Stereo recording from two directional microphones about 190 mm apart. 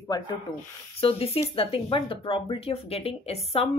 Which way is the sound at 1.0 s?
30° left (ahead or behind).